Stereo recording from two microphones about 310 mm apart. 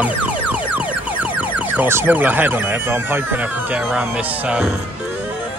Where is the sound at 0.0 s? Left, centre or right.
Centre.